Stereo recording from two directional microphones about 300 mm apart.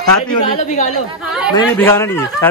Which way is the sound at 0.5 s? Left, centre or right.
Left.